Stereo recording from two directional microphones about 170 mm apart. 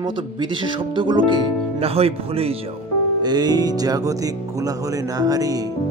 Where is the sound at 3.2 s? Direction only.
25° right (ahead or behind).